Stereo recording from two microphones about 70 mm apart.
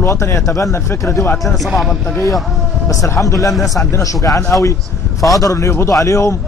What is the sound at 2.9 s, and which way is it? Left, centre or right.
A man's voice, left.